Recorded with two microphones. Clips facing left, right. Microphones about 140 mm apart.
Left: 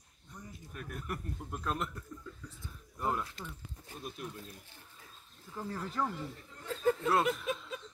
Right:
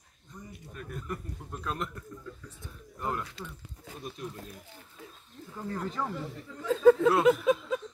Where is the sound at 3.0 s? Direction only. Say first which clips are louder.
Even; 5° left (ahead or behind).